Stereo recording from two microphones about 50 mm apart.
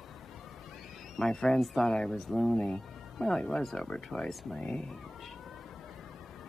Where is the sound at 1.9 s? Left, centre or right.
Centre.